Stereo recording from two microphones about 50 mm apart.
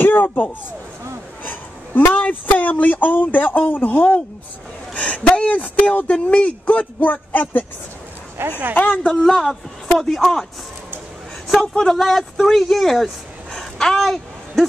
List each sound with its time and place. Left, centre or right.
0.0 s speech: left
1.4 s a sound: left
2.1 s speech: left
8.5 s speech: right
9.3 s speech: centre
11.4 s a man's voice: centre